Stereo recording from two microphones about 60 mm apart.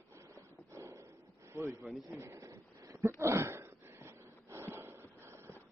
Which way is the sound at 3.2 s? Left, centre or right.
Right.